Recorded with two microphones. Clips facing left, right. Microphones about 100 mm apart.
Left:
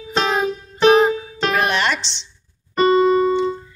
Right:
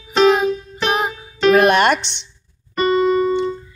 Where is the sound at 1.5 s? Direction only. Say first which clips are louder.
Right 7 dB; 50° right (ahead or behind).